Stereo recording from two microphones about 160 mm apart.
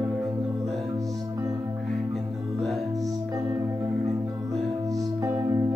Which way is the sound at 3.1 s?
20° right (ahead or behind).